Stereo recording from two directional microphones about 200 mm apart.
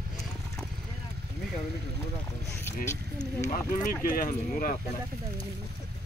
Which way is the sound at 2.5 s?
15° left (ahead or behind).